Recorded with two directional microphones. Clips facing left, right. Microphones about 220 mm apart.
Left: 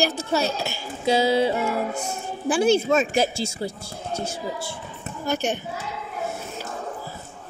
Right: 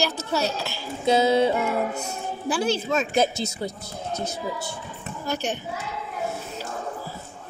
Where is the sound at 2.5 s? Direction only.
50° left (ahead or behind).